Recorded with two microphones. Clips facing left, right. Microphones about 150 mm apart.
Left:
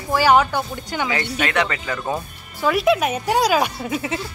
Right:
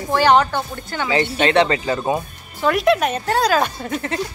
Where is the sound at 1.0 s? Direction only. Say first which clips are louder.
Right 7 dB; 25° right (ahead or behind).